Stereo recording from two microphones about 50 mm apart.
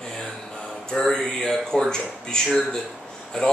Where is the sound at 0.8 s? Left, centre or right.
Centre.